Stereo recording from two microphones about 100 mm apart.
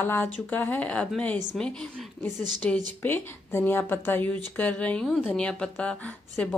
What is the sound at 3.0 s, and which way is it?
A woman's voice, 20° left (ahead or behind).